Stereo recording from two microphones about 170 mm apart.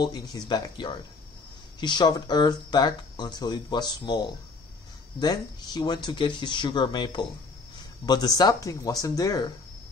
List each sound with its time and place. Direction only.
0.0 s speech: 20° left (ahead or behind)